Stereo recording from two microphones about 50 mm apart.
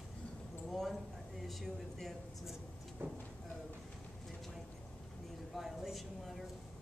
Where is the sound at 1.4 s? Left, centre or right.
Centre.